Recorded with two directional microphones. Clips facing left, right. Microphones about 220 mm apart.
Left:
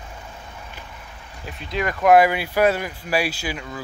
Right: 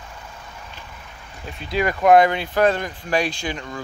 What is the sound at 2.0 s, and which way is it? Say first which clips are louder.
Speech: even; 5° left (ahead or behind).